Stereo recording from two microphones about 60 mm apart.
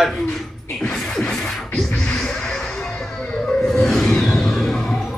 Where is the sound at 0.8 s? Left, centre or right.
Centre.